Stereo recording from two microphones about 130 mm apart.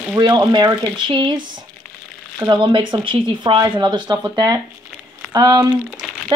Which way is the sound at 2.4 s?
40° right (ahead or behind).